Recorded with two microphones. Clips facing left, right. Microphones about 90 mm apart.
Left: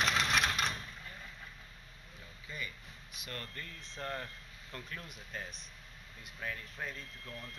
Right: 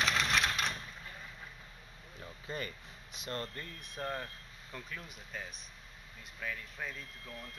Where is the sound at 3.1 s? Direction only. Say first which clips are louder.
Right 5 dB; 25° right (ahead or behind).